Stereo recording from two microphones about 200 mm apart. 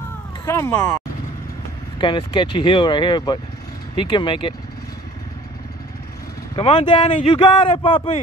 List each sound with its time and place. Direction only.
0.5 s speech: 15° left (ahead or behind)
2.0 s speech: 25° left (ahead or behind)
6.5 s speech: 25° left (ahead or behind)